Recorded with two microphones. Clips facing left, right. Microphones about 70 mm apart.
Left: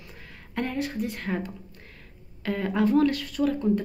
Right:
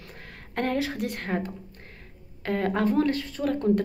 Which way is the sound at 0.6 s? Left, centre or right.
Right.